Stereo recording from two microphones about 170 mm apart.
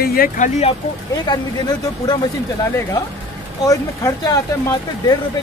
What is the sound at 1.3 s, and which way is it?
Speech, 25° left (ahead or behind).